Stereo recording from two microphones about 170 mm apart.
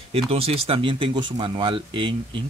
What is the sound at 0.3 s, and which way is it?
Speech, 35° right (ahead or behind).